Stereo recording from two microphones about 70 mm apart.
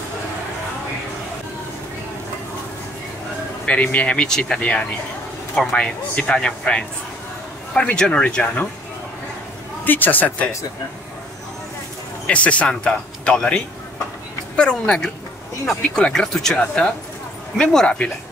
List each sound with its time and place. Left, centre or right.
3.6 s speech: centre
9.8 s speech: left
12.3 s speech: centre
14.6 s speech: centre
16.5 s speech: centre